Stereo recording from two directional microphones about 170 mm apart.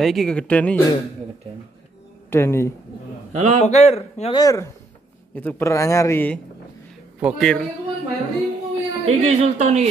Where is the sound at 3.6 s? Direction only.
40° left (ahead or behind).